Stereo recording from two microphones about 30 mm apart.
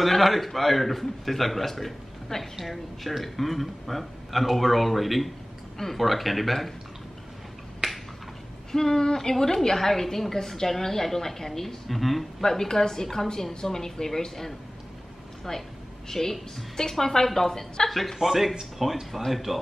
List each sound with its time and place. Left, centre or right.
0.0 s speech: centre
7.8 s finger snapping: right
8.7 s a woman's voice: centre
12.4 s a woman's voice: centre
18.2 s speech: centre